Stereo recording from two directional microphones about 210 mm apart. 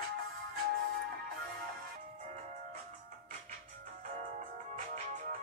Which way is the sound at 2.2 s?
35° right (ahead or behind).